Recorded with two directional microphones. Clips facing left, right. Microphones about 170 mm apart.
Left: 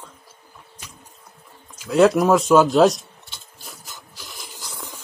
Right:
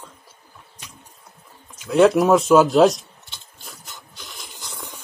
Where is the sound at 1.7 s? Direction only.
Centre (ahead or behind).